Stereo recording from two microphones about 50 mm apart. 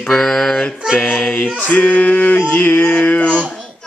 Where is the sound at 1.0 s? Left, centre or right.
Left.